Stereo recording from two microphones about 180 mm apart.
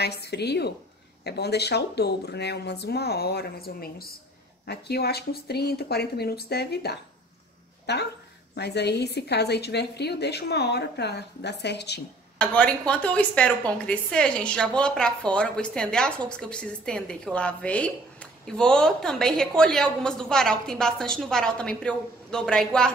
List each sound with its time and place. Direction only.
0.0 s a woman's voice: 65° left (ahead or behind)
12.4 s a woman's voice: 5° left (ahead or behind)